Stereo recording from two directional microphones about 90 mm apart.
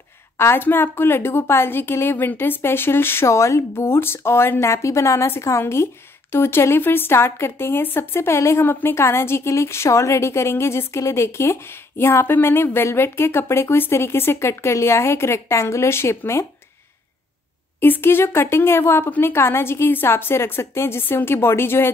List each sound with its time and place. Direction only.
0.4 s a woman's voice: 25° left (ahead or behind)
17.7 s a woman's voice: 25° left (ahead or behind)